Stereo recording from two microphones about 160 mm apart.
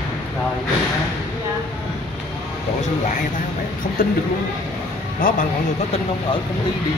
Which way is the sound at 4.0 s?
65° left (ahead or behind).